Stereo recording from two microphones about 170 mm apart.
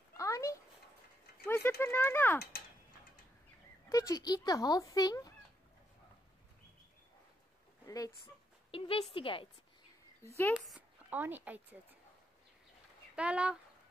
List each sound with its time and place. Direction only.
0.2 s a sound: 20° left (ahead or behind)
1.4 s speech: 15° left (ahead or behind)
3.9 s speech: 20° left (ahead or behind)
7.8 s speech: 20° left (ahead or behind)
8.7 s a woman's voice: 30° left (ahead or behind)
10.2 s speech: 15° left (ahead or behind)
10.7 s a sound: 10° right (ahead or behind)
13.1 s speech: 5° right (ahead or behind)